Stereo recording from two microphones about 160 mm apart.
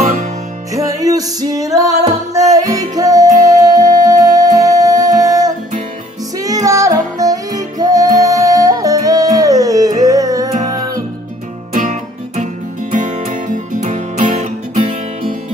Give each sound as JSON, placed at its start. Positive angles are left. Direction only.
{"t": 0.7, "sound": "music", "side_deg": -20}
{"t": 3.3, "sound": "music", "side_deg": -50}
{"t": 3.6, "sound": "music", "side_deg": -25}
{"t": 11.7, "sound": "music", "side_deg": -55}